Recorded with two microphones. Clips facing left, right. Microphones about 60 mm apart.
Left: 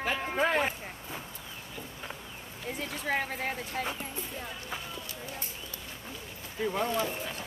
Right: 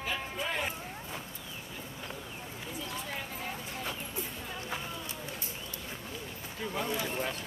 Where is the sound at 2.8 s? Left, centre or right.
Left.